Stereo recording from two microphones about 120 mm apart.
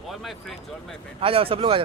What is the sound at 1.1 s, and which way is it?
Speech, 50° right (ahead or behind).